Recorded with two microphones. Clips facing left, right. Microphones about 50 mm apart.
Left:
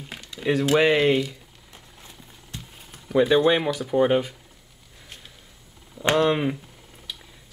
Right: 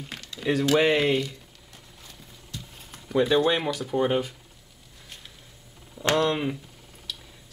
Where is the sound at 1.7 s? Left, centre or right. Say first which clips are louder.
Left 2 dB; left.